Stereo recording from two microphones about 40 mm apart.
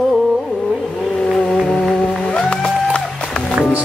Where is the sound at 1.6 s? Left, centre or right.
Centre.